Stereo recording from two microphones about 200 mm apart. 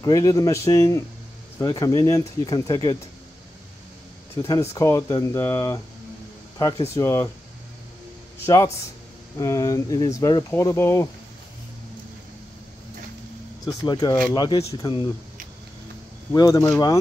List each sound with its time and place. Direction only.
0.0 s speech: 20° left (ahead or behind)
4.4 s speech: 15° left (ahead or behind)
7.0 s speech: 15° left (ahead or behind)
8.5 s speech: 15° left (ahead or behind)
13.7 s speech: 20° left (ahead or behind)
16.3 s speech: 15° left (ahead or behind)